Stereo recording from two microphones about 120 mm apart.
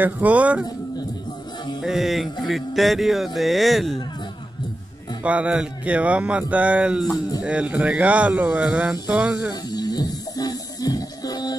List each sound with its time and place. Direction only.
0.0 s a man's voice: 10° right (ahead or behind)
1.8 s speech: 5° right (ahead or behind)
5.2 s a man's voice: 10° right (ahead or behind)
9.5 s music: 35° left (ahead or behind)